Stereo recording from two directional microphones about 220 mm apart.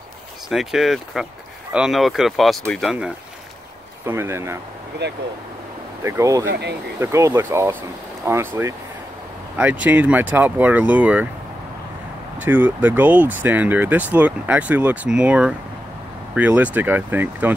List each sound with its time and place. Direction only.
0.5 s speech: centre (ahead or behind)
4.0 s speech: 10° right (ahead or behind)
5.0 s speech: 50° right (ahead or behind)
6.0 s speech: 15° right (ahead or behind)
12.4 s speech: 5° right (ahead or behind)